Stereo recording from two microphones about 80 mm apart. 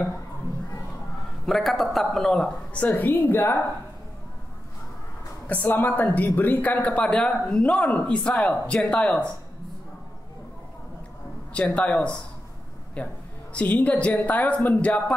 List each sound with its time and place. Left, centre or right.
1.4 s speech: centre; by 3.5 s left
5.5 s speech: left
11.5 s speech: centre